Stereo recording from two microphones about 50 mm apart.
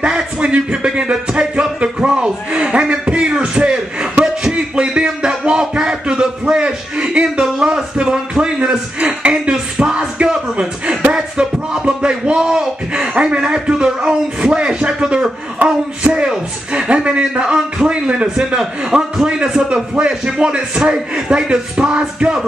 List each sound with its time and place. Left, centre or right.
0.0 s music: right
9.2 s a sound: centre
19.4 s a man's voice: centre